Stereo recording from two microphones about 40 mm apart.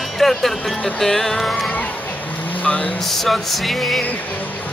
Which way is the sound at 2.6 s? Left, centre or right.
Left.